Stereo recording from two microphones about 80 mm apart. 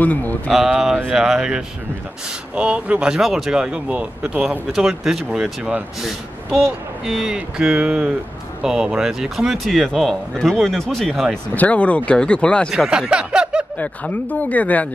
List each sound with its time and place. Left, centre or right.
0.0 s speech: centre
0.5 s speech: centre
4.7 s speech: centre
7.1 s speech: centre
11.5 s speech: centre
12.7 s speech: centre
13.7 s speech: centre